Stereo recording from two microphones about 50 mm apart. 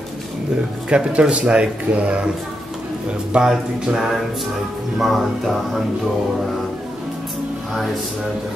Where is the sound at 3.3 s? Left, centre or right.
Centre.